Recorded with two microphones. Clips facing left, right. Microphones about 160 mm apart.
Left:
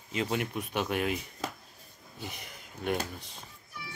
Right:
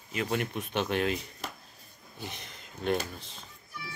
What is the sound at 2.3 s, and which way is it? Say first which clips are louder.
Speech: even; 10° left (ahead or behind).